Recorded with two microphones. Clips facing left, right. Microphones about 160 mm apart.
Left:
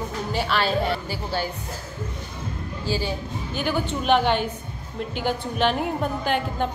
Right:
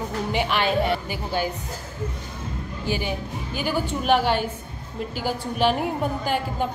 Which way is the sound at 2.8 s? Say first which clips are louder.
Even; 15° right (ahead or behind).